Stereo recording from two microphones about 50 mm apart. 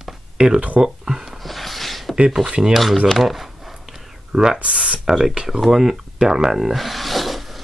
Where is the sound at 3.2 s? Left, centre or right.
Centre.